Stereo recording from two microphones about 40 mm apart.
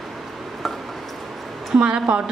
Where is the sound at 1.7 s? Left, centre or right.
Right.